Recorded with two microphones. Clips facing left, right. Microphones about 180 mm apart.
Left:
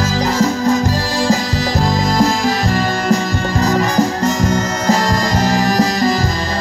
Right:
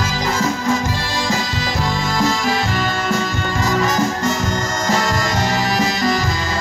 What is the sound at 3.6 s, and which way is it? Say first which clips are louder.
Music: left 3 dB; 40° left (ahead or behind).